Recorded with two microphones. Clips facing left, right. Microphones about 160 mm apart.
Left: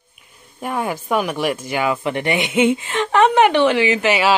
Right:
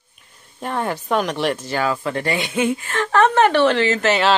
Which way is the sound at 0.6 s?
10° left (ahead or behind).